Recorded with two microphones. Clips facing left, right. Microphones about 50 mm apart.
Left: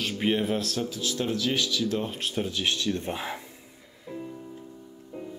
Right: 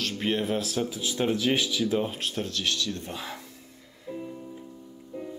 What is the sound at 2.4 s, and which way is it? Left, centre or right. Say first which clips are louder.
Speech: left 3 dB; centre.